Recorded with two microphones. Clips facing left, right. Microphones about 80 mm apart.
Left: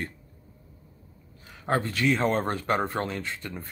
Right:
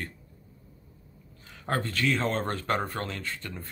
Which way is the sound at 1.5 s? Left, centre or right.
Centre.